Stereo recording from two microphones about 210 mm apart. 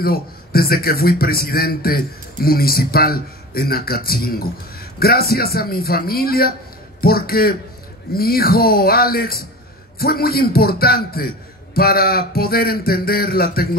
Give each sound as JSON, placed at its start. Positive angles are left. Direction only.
{"t": 0.0, "sound": "speech", "side_deg": 45}